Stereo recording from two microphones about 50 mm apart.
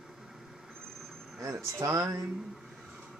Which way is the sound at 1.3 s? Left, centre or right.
Right.